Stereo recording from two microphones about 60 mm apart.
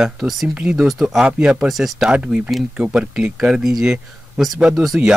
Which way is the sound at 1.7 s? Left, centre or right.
Centre.